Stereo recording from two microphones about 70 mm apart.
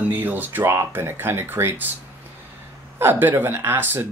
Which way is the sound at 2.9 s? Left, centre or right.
Right.